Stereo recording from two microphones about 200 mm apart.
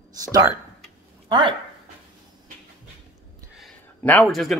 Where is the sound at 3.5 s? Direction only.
5° left (ahead or behind).